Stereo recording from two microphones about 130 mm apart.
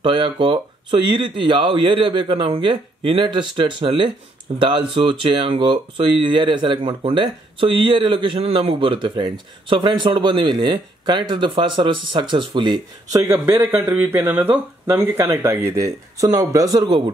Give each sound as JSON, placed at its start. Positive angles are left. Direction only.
{"t": 0.0, "sound": "speech", "side_deg": -40}